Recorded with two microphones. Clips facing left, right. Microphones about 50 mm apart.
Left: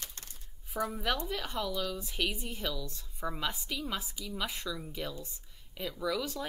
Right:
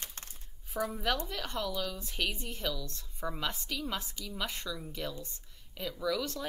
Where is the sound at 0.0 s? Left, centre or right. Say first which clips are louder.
Right 1 dB; right.